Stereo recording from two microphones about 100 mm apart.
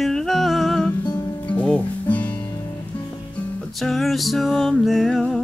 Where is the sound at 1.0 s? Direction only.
45° left (ahead or behind).